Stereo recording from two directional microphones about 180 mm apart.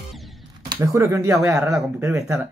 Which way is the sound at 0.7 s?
15° right (ahead or behind).